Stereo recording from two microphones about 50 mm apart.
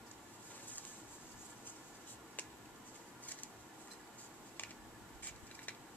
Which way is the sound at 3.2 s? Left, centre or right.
Left.